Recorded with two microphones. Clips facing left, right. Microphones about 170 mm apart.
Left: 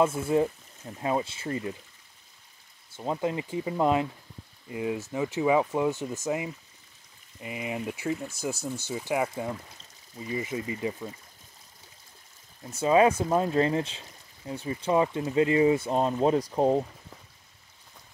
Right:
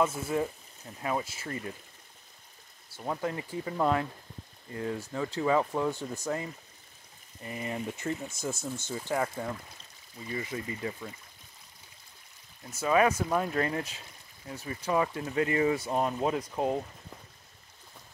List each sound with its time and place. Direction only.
0.0 s speech: 25° left (ahead or behind)
3.0 s speech: 20° left (ahead or behind)
12.6 s speech: 25° left (ahead or behind)